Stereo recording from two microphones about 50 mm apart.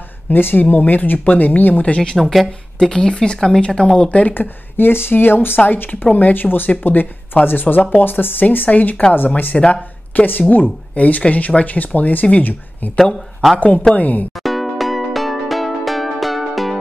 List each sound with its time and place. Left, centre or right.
0.3 s speech: left
2.1 s speech: centre
2.9 s speech: centre
4.3 s speech: left
9.5 s speech: centre
10.1 s speech: left
13.9 s speech: left
14.3 s music: centre